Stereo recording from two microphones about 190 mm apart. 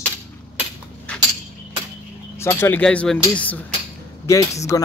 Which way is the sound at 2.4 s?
10° left (ahead or behind).